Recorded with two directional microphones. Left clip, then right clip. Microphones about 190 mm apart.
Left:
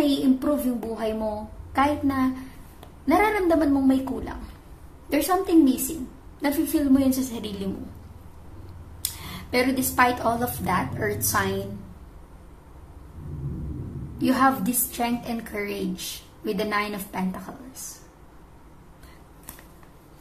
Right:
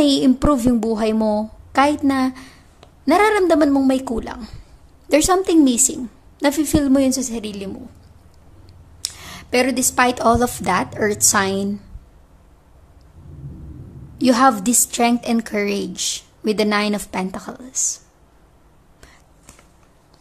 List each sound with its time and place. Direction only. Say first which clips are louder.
0.0 s a woman's voice: right 7 dB; 50° right (ahead or behind)
9.0 s a woman's voice: right 5 dB; 40° right (ahead or behind)
14.1 s a woman's voice: right 7 dB; 45° right (ahead or behind)